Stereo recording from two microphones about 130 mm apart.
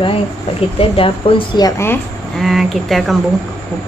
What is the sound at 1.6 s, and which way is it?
Speech, 20° left (ahead or behind).